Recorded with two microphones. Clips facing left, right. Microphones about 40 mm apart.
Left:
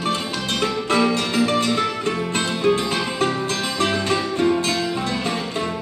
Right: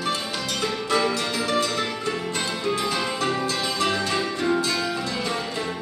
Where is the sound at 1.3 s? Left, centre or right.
Left.